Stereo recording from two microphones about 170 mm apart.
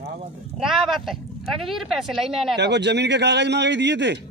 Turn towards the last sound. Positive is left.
turn(degrees=-90)